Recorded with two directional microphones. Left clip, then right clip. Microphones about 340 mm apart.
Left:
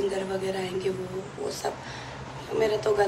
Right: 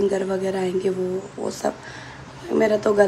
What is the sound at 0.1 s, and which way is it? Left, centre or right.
Speech, right.